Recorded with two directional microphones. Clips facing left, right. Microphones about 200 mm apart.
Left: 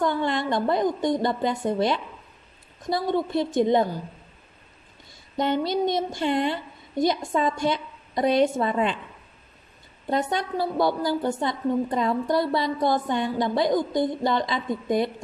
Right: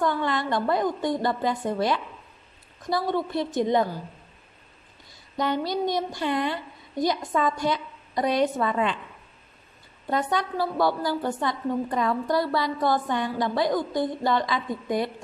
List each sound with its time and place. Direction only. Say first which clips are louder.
0.0 s a woman's voice: left 1 dB; 25° left (ahead or behind)
5.4 s a woman's voice: left 2 dB; 25° left (ahead or behind)
10.0 s a woman's voice: left 1 dB; 20° left (ahead or behind)